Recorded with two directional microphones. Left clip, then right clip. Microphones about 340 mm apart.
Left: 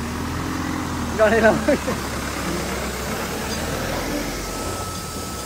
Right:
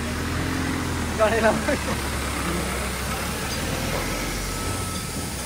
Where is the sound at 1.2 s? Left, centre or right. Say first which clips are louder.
Left 4 dB; left.